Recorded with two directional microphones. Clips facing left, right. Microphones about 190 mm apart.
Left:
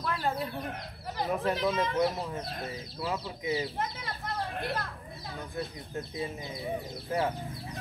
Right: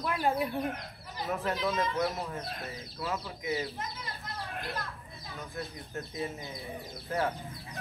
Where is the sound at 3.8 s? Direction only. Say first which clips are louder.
Left 5 dB; 55° left (ahead or behind).